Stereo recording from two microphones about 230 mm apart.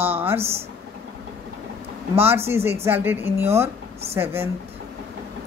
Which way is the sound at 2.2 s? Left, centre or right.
Centre.